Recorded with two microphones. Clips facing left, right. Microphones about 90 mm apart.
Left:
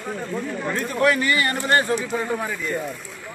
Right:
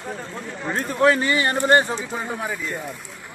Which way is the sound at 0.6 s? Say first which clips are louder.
Right 3 dB; 30° right (ahead or behind).